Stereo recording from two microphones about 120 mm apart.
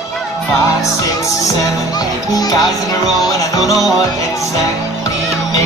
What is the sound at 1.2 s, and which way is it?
Music, 30° left (ahead or behind).